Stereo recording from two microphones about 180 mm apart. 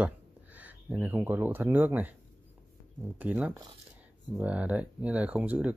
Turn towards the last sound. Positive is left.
turn(degrees=-10)  # may be behind; listen again after turning